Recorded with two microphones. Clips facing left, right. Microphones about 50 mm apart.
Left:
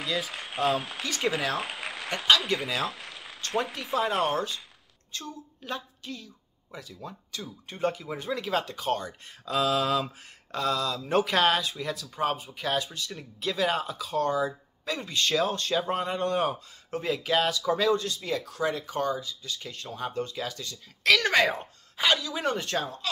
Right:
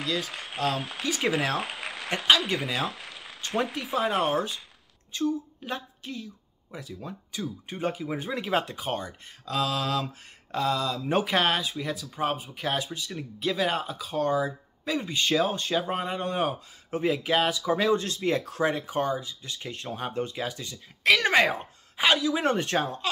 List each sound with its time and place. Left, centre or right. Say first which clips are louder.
0.0 s speech: right 1 dB; centre
9.5 s speech: left 2 dB; centre
10.5 s speech: right 1 dB; centre
17.9 s speech: right 3 dB; right